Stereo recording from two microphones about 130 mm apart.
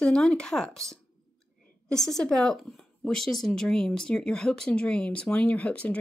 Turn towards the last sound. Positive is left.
turn(degrees=10)  # may be behind; listen again after turning